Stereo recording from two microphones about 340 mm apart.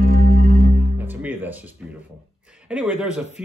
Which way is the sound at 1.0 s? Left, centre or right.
Centre.